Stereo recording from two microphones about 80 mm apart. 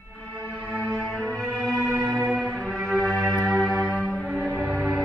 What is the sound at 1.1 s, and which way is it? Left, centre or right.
Music, centre.